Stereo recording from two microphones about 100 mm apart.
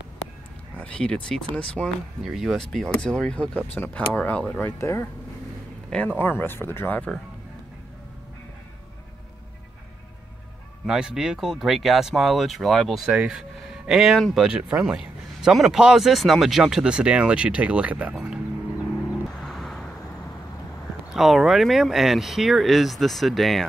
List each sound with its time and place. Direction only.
0.7 s speech: 10° left (ahead or behind)
2.2 s speech: 5° right (ahead or behind); by 5.0 s 25° left (ahead or behind)
5.9 s speech: 10° left (ahead or behind)
6.1 s speech: 20° left (ahead or behind)
10.9 s speech: 5° right (ahead or behind)
19.2 s vehicle: centre (ahead or behind)
21.1 s speech: 5° right (ahead or behind)